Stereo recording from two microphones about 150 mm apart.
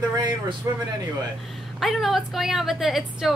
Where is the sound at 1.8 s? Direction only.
Centre (ahead or behind).